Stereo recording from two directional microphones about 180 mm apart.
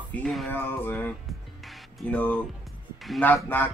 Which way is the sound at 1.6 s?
5° left (ahead or behind).